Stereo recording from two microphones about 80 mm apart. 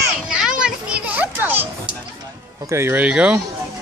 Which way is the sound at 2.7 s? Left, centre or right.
Right.